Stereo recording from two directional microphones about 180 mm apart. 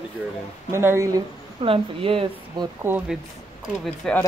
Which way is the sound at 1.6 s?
30° right (ahead or behind).